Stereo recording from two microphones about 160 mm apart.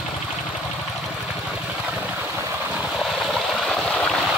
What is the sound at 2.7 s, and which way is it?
Stream, centre (ahead or behind).